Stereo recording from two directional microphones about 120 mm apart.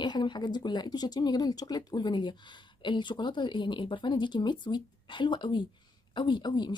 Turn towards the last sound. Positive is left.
turn(degrees=40)  # may be behind; listen again after turning